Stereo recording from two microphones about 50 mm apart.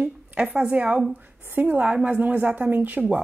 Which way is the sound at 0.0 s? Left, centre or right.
Right.